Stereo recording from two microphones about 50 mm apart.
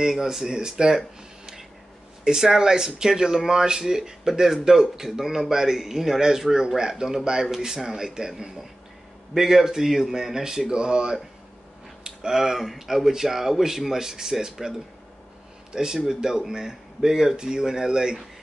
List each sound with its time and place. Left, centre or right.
0.0 s speech: centre